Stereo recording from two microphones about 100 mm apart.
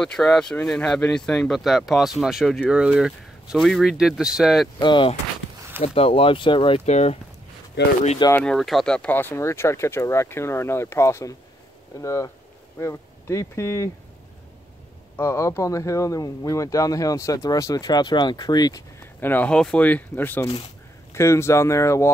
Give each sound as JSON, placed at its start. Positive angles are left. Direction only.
{"t": 0.0, "sound": "speech", "side_deg": 5}
{"t": 4.7, "sound": "speech", "side_deg": 50}
{"t": 5.9, "sound": "speech", "side_deg": 70}
{"t": 8.4, "sound": "speech", "side_deg": 5}
{"t": 15.1, "sound": "speech", "side_deg": 30}
{"t": 19.2, "sound": "speech", "side_deg": 20}
{"t": 19.5, "sound": "speech", "side_deg": 5}